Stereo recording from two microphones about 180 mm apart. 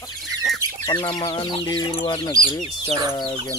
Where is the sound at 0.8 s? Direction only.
25° left (ahead or behind).